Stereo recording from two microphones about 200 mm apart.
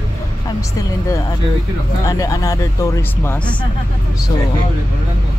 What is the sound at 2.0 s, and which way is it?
Speech, 15° left (ahead or behind).